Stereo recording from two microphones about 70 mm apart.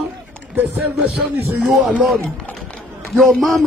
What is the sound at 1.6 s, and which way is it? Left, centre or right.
Speech, centre.